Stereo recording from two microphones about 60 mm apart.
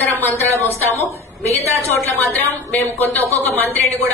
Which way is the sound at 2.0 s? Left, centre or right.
Left.